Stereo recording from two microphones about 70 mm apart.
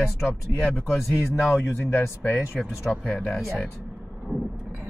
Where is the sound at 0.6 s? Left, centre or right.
Centre.